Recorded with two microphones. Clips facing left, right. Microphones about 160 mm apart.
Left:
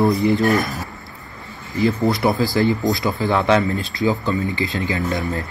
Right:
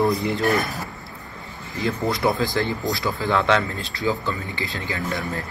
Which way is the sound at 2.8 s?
20° left (ahead or behind).